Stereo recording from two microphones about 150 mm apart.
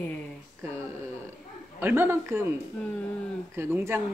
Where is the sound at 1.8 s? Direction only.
15° right (ahead or behind).